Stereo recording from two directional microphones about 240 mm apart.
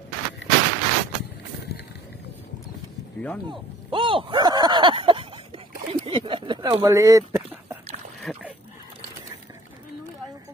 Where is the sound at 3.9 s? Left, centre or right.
Right.